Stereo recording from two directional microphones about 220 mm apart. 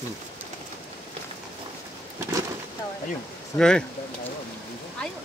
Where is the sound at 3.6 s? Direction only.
5° left (ahead or behind).